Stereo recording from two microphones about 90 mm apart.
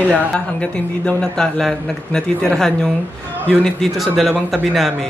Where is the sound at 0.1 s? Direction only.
15° left (ahead or behind).